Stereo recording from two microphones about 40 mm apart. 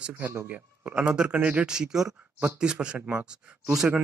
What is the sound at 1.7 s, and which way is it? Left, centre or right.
Speech, centre.